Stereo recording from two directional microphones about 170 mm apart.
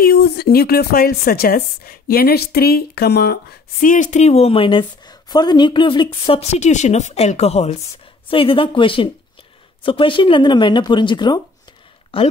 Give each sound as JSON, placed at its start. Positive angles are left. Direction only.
{"t": 0.0, "sound": "a woman's voice", "side_deg": 65}